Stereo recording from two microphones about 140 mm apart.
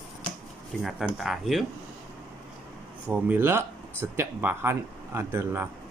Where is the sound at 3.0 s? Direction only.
15° right (ahead or behind).